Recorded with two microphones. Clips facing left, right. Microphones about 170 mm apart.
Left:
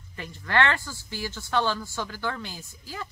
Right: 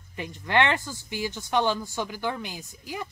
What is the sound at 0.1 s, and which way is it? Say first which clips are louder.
A woman's voice: right 2 dB; 20° right (ahead or behind).